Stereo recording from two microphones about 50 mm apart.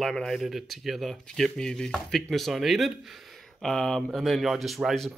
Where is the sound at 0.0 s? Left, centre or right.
Centre.